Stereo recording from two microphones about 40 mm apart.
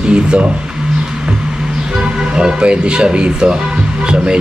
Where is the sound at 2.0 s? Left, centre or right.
Right.